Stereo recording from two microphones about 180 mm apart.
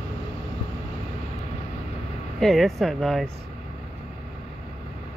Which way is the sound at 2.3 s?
Centre (ahead or behind).